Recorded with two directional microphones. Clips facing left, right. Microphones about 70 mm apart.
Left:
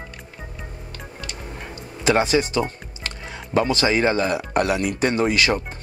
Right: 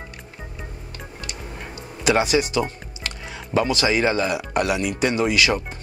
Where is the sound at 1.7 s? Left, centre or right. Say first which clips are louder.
Left 1 dB; left.